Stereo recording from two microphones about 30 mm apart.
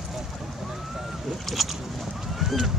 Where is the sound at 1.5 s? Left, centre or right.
Centre.